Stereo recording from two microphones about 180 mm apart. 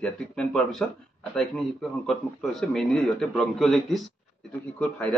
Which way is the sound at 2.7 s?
5° left (ahead or behind).